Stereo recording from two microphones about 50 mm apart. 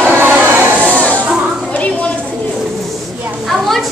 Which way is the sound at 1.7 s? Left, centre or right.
Left.